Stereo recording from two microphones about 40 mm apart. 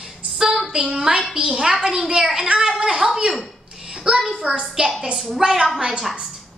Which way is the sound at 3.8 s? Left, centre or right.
Right.